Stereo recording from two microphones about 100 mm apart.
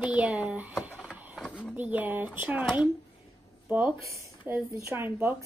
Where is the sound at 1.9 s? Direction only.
15° right (ahead or behind).